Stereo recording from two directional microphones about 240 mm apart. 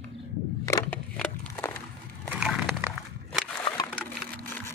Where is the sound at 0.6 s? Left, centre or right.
Centre.